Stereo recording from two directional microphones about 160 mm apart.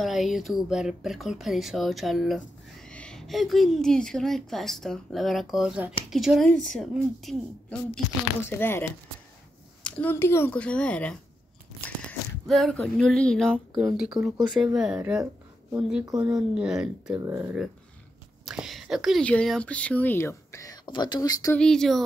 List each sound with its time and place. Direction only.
0.0 s speech: centre (ahead or behind)
8.5 s speech: 15° left (ahead or behind); by 17.2 s 5° right (ahead or behind)
17.2 s speech: 20° right (ahead or behind)
18.4 s speech: centre (ahead or behind); by 21.5 s 20° left (ahead or behind)
21.5 s speech: 5° left (ahead or behind)